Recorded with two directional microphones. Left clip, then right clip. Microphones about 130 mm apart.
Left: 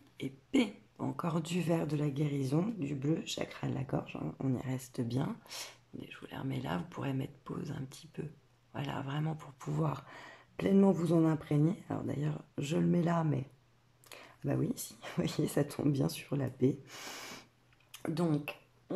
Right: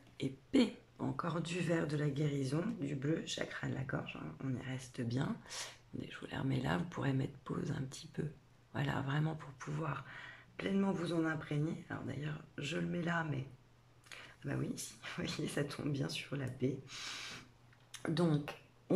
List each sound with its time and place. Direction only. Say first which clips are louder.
0.2 s speech: left 1 dB; 5° left (ahead or behind); by 3.4 s 35° left (ahead or behind)
3.4 s speech: left 2 dB; 25° left (ahead or behind)
5.5 s speech: left 1 dB; centre (ahead or behind)
9.6 s speech: left 6 dB; 35° left (ahead or behind)
16.8 s speech: even; 60° left (ahead or behind)
17.9 s speech: left 1 dB; 10° left (ahead or behind)
18.9 s a sound: right 3 dB; 15° right (ahead or behind)